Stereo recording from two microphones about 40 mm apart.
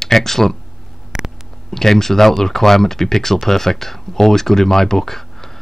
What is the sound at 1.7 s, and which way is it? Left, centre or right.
Speech, centre.